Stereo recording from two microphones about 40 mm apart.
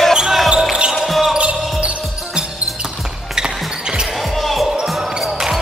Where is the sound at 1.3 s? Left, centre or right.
Right.